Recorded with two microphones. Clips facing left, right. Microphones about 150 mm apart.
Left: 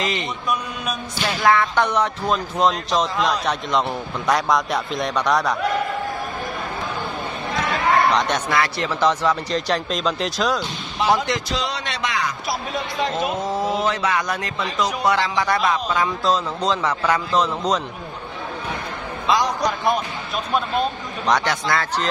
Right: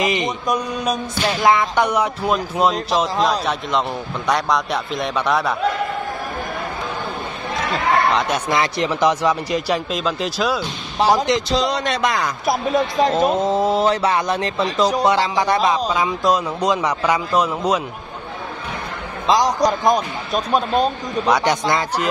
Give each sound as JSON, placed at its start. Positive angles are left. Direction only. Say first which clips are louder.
{"t": 0.0, "sound": "speech", "louder": "right 5 dB", "side_deg": -15}
{"t": 1.4, "sound": "speech", "louder": "right 1 dB", "side_deg": -15}
{"t": 8.1, "sound": "speech", "louder": "right 1 dB", "side_deg": -5}
{"t": 8.5, "sound": "speech", "louder": "right 2 dB", "side_deg": -20}
{"t": 11.0, "sound": "a man's voice", "louder": "right 4 dB", "side_deg": -35}
{"t": 13.1, "sound": "speech", "louder": "right 6 dB", "side_deg": -30}
{"t": 15.0, "sound": "speech", "louder": "right 3 dB", "side_deg": -25}
{"t": 19.2, "sound": "speech", "louder": "right 4 dB", "side_deg": -35}
{"t": 21.3, "sound": "speech", "louder": "right 2 dB", "side_deg": -10}